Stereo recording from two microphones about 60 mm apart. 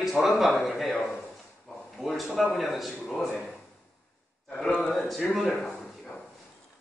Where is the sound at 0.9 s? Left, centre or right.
Left.